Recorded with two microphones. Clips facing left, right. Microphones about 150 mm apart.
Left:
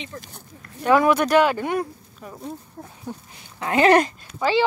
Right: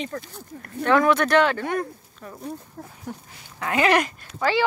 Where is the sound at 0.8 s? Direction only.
10° left (ahead or behind).